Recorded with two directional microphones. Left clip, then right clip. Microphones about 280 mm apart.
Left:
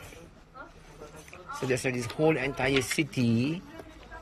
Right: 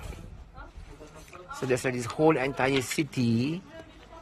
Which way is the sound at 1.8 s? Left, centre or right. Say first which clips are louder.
Right 3 dB; centre.